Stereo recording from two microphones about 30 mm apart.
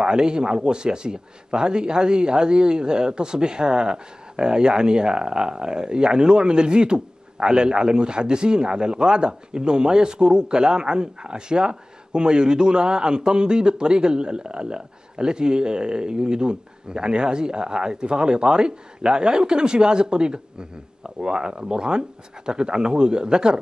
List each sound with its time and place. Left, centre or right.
0.0 s a man's voice: right